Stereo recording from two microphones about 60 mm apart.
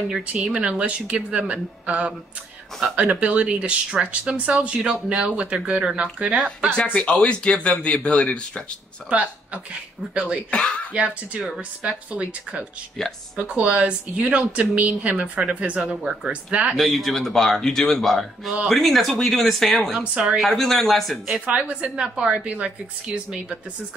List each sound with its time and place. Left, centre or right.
0.3 s speech: centre
6.9 s speech: centre
9.1 s speech: right
10.5 s speech: centre
10.9 s speech: right
16.7 s a man's voice: centre
20.0 s a woman's voice: centre
20.3 s a man's voice: centre
21.5 s a woman's voice: centre